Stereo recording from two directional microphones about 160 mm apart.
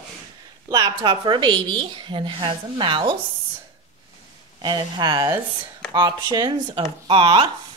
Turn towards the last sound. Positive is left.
turn(degrees=-35)  # may be behind; listen again after turning